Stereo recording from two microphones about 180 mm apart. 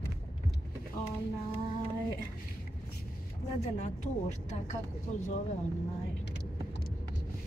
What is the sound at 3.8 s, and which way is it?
Speech, 40° left (ahead or behind).